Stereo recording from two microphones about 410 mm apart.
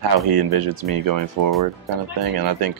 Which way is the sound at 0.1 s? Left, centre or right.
Right.